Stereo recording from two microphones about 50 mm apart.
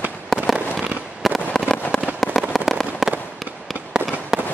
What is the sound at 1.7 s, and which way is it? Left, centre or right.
Fireworks, left.